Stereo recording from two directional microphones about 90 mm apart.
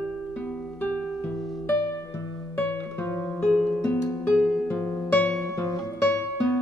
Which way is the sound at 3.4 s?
10° left (ahead or behind).